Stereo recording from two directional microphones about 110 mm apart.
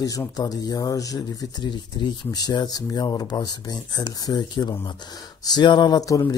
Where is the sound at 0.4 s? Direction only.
35° left (ahead or behind).